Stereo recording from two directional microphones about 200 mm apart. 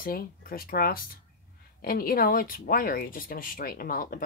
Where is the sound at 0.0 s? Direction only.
45° left (ahead or behind).